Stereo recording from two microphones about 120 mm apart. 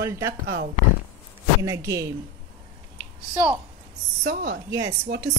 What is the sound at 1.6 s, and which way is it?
Speech, 25° right (ahead or behind).